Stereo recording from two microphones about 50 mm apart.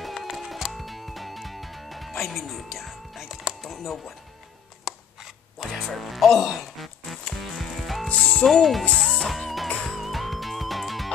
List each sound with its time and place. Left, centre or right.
0.0 s music: centre
4.8 s scissors: centre
5.7 s music: centre
8.5 s speech: centre
8.9 s music: centre